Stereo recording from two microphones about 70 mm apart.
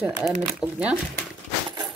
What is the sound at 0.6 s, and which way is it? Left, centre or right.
Speech, centre.